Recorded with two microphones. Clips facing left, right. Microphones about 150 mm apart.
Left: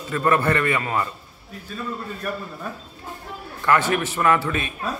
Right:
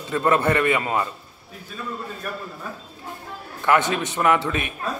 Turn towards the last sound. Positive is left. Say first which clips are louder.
# even
turn(degrees=-20)  # may be behind; listen again after turning